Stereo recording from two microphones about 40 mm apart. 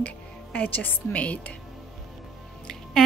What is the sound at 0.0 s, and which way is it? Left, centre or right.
Speech, left.